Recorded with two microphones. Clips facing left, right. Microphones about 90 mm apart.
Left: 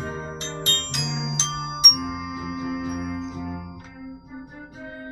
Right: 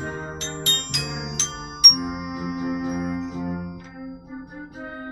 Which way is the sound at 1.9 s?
10° right (ahead or behind).